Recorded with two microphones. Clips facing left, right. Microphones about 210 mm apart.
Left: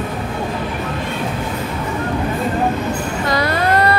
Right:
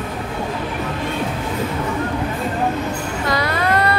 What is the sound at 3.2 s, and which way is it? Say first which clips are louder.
Vehicle: left 2 dB; 40° left (ahead or behind).